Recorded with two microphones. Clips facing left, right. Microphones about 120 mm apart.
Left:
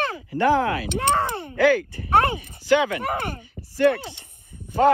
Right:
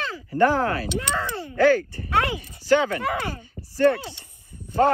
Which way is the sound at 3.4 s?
15° left (ahead or behind).